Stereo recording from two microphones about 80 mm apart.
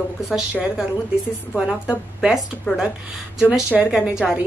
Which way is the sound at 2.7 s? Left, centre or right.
Left.